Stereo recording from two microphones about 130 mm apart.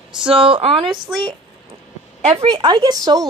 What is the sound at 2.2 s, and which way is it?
Speech, 50° right (ahead or behind).